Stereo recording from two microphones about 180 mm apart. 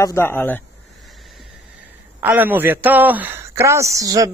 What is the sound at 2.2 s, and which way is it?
Speech, 10° right (ahead or behind).